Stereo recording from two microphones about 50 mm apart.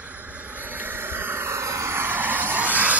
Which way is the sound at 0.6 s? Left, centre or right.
Right.